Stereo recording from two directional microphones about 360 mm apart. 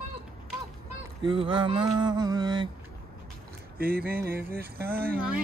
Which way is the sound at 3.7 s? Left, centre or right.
Right.